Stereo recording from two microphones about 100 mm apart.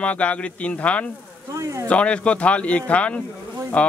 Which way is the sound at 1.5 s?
30° right (ahead or behind).